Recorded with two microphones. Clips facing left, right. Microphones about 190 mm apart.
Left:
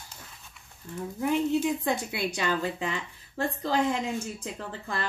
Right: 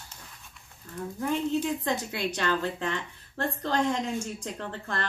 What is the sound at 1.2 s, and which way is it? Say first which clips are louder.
Speech: left 2 dB; 10° left (ahead or behind).